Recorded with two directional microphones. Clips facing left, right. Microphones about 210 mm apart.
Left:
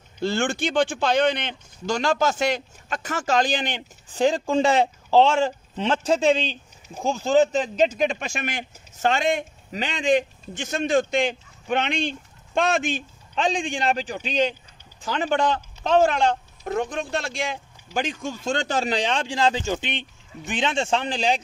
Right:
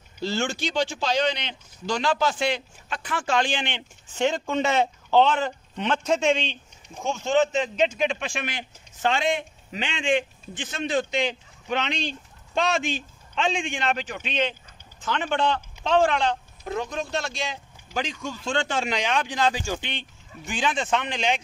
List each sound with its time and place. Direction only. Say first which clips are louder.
0.2 s a man's voice: left 3 dB; 55° left (ahead or behind); by 21.4 s 35° left (ahead or behind)